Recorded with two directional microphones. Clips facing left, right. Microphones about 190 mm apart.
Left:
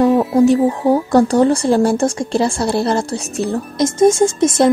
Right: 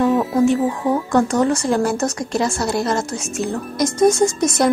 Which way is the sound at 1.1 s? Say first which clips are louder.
Left 4 dB; 35° left (ahead or behind).